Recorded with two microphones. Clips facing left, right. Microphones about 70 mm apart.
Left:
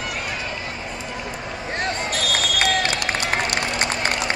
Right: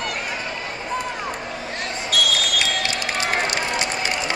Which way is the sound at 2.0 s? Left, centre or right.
Left.